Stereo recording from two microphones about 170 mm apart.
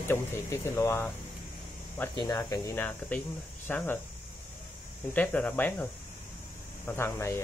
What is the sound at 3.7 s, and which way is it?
Speech, 10° left (ahead or behind).